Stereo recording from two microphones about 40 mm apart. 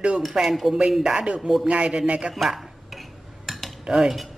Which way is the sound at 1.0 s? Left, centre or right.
Right.